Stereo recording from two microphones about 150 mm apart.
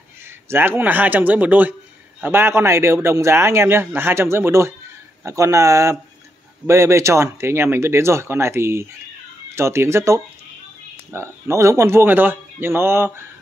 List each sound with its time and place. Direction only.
0.5 s a man's voice: 15° right (ahead or behind)